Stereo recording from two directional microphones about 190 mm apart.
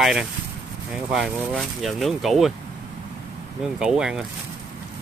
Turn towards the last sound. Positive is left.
turn(degrees=-5)  # may be behind; listen again after turning